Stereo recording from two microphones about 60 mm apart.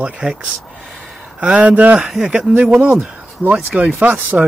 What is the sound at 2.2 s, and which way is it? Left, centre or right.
Speech, centre.